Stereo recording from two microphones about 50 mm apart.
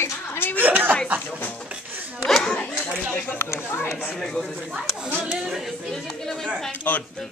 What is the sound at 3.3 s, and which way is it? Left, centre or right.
Speech, left.